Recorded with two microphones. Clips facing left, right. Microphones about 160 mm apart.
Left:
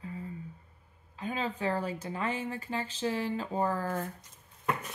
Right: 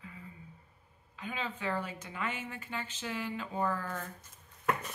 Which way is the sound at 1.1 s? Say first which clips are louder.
Left 5 dB; 35° left (ahead or behind).